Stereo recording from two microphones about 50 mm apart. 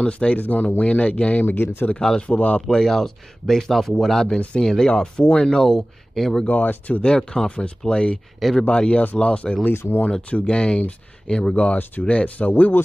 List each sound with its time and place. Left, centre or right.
0.0 s speech: left
2.0 s speech: centre
2.2 s speech: left
2.7 s speech: centre
6.4 s speech: left
7.0 s speech: centre
9.8 s speech: left
10.3 s speech: left
11.5 s speech: left
12.4 s speech: left